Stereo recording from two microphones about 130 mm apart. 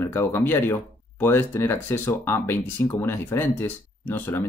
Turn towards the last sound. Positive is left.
turn(degrees=15)  # may be behind; listen again after turning